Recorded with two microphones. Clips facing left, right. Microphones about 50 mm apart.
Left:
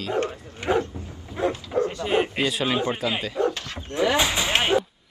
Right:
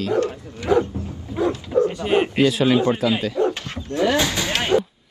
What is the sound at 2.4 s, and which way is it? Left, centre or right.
Speech, centre.